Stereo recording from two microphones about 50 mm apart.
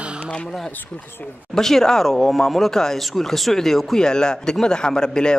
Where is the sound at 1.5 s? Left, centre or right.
Centre.